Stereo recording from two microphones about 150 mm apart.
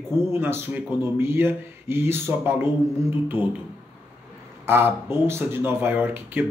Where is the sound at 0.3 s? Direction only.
15° right (ahead or behind).